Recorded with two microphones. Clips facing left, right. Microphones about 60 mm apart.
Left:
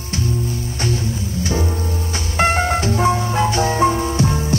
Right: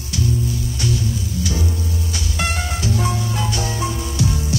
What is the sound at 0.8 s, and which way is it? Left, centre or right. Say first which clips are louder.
Music: left 1 dB; left.